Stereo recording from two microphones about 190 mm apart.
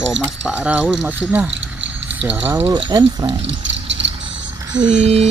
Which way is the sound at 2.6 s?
25° right (ahead or behind).